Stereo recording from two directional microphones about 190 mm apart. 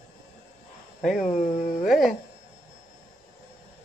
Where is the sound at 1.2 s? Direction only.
40° left (ahead or behind).